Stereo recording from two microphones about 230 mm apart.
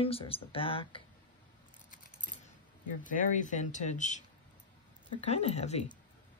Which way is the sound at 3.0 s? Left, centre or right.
Left.